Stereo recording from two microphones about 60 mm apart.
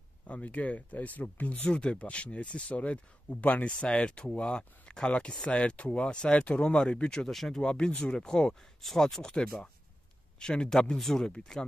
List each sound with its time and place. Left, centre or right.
0.3 s speech: left
1.7 s speech: centre